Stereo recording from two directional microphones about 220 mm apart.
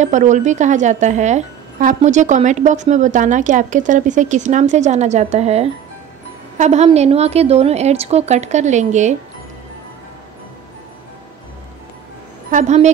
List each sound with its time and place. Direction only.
0.0 s a woman's voice: 35° right (ahead or behind)
12.4 s speech: 35° right (ahead or behind)